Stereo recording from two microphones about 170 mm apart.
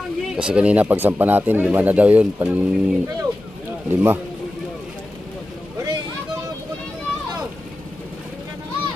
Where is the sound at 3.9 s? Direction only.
10° right (ahead or behind).